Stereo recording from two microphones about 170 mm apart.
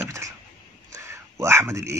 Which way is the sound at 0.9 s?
15° right (ahead or behind).